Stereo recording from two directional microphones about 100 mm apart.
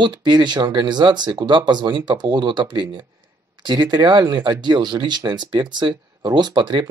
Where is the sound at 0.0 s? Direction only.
50° right (ahead or behind).